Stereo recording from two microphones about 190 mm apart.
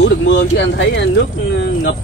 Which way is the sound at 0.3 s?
70° left (ahead or behind).